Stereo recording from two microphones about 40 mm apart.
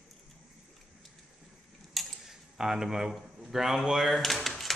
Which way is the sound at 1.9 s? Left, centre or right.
Centre.